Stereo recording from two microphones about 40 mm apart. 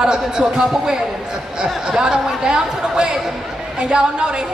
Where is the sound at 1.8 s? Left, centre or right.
Centre.